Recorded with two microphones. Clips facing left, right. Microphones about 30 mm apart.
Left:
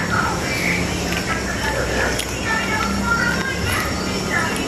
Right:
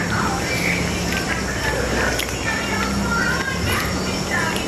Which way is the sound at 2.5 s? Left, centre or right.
Centre.